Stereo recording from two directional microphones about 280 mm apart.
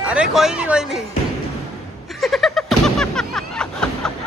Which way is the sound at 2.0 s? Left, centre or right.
Centre.